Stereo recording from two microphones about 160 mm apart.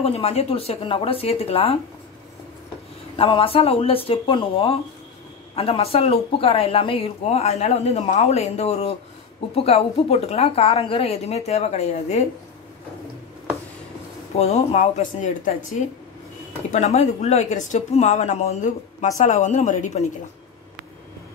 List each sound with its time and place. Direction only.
0.0 s speech: 40° left (ahead or behind)
3.2 s speech: 35° left (ahead or behind)
14.3 s speech: 40° left (ahead or behind)
16.7 s speech: 45° left (ahead or behind)